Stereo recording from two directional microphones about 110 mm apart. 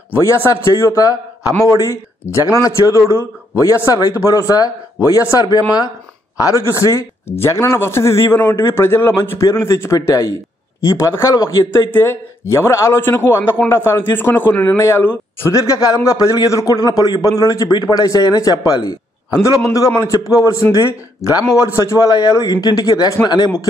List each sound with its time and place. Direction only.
0.1 s a man's voice: 20° left (ahead or behind)
14.8 s a man's voice: 25° left (ahead or behind)